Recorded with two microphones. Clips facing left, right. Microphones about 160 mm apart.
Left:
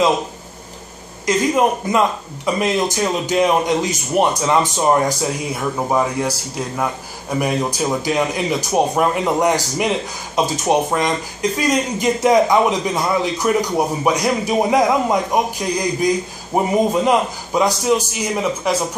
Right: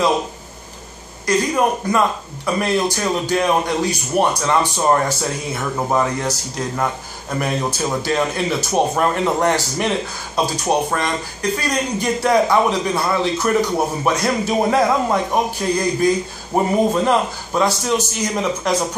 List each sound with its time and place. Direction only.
1.2 s speech: 20° left (ahead or behind)